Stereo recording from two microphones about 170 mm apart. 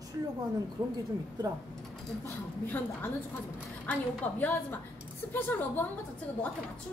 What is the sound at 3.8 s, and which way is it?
Speech, 10° left (ahead or behind).